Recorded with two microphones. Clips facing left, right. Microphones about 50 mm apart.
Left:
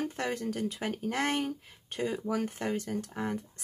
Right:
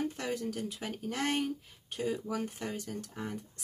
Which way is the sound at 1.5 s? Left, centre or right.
Left.